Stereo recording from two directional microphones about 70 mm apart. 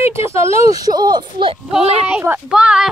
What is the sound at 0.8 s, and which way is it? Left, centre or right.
Speech, right.